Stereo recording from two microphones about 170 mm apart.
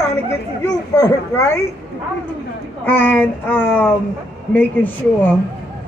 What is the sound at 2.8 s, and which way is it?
A child's voice, 10° left (ahead or behind).